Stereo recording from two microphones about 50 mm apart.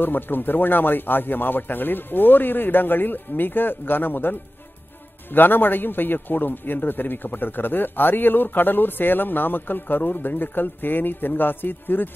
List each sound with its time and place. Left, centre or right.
0.0 s a man's voice: left